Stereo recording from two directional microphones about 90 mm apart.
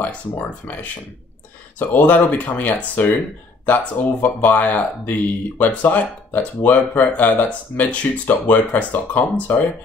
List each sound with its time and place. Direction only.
0.0 s speech: 20° left (ahead or behind)
1.8 s speech: 15° left (ahead or behind)